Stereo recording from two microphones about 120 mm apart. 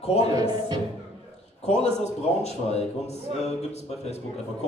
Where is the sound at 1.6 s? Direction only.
65° left (ahead or behind).